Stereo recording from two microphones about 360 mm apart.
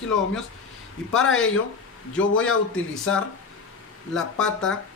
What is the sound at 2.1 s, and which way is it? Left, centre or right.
Speech, centre.